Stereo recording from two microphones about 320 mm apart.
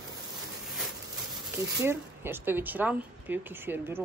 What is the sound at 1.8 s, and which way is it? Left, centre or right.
A woman's voice, centre.